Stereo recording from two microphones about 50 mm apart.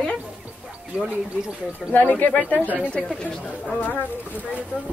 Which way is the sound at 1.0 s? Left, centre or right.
Centre.